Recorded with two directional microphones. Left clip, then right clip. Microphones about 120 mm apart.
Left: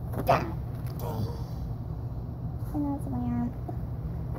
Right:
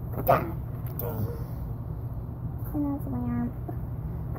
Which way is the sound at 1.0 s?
40° right (ahead or behind).